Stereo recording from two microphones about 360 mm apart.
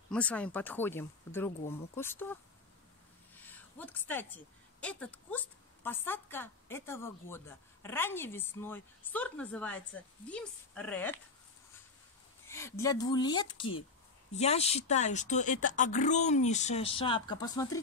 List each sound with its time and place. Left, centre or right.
0.1 s speech: centre
3.3 s a sound: centre
4.7 s a woman's voice: centre
12.4 s a woman's voice: centre